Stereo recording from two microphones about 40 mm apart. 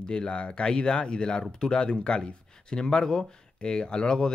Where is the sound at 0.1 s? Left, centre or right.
Left.